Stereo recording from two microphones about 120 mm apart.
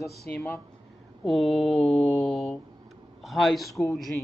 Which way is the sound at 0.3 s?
15° left (ahead or behind).